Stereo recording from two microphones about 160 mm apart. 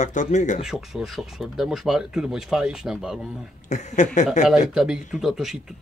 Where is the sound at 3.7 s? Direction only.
50° left (ahead or behind).